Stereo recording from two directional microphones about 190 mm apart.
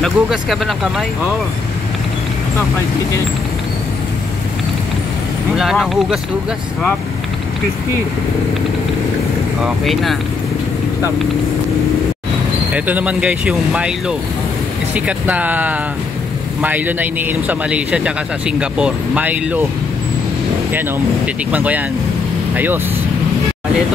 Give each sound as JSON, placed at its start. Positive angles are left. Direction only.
{"t": 0.0, "sound": "speech", "side_deg": 0}
{"t": 5.6, "sound": "speech", "side_deg": 0}
{"t": 9.6, "sound": "speech", "side_deg": 0}
{"t": 12.7, "sound": "a man's voice", "side_deg": -10}
{"t": 21.5, "sound": "a man's voice", "side_deg": -10}